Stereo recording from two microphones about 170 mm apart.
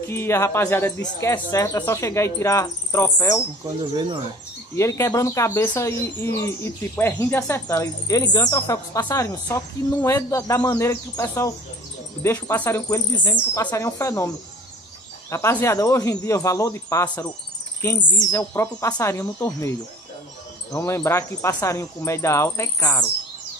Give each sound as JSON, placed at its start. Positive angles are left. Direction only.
{"t": 0.0, "sound": "speech", "side_deg": 15}
{"t": 3.6, "sound": "speech", "side_deg": -25}
{"t": 4.7, "sound": "speech", "side_deg": 15}
{"t": 20.7, "sound": "speech", "side_deg": 15}